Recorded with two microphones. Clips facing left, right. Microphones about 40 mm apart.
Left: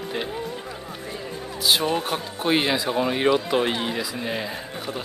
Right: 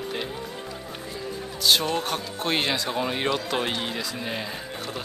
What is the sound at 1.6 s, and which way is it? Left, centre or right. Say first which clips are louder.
Speech: left 1 dB; centre.